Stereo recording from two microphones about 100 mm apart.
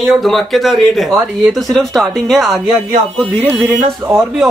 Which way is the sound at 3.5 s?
25° right (ahead or behind).